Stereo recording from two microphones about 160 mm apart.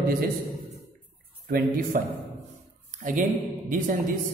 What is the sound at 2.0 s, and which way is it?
A man's voice, 60° right (ahead or behind).